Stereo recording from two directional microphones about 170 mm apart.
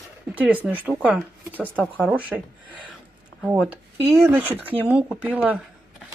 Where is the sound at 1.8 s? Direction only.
Centre (ahead or behind).